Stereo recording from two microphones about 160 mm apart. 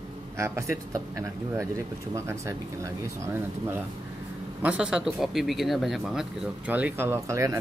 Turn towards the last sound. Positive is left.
turn(degrees=-20)  # may be behind; listen again after turning